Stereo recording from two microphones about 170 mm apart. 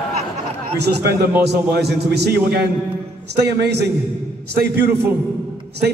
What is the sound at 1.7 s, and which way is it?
A man's voice, 75° right (ahead or behind).